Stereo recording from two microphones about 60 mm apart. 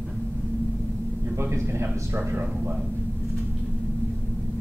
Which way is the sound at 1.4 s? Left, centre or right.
Right.